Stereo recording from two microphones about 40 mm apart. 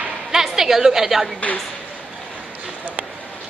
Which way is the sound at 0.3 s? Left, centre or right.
Centre.